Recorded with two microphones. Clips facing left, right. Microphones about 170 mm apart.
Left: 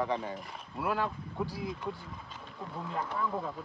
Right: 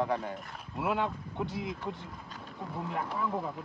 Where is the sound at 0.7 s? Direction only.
25° right (ahead or behind).